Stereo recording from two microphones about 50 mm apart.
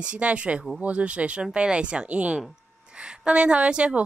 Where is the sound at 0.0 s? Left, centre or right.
Right.